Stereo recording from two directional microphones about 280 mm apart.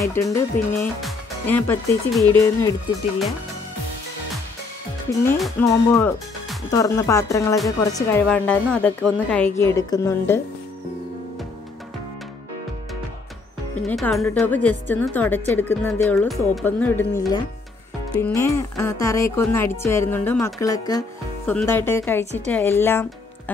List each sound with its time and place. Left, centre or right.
0.0 s a woman's voice: centre
5.4 s a woman's voice: centre
13.8 s a woman's voice: centre
22.2 s a woman's voice: right
22.5 s speech: centre